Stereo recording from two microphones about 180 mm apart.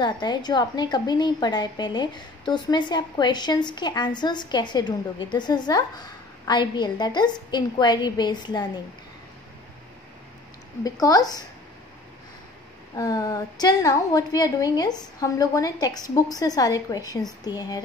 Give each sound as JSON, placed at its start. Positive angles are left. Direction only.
{"t": 0.0, "sound": "a woman's voice", "side_deg": 25}
{"t": 10.8, "sound": "a woman's voice", "side_deg": 20}
{"t": 12.9, "sound": "a woman's voice", "side_deg": 20}